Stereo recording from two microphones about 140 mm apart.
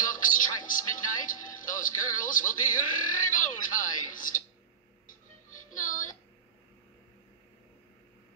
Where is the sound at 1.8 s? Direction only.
70° left (ahead or behind).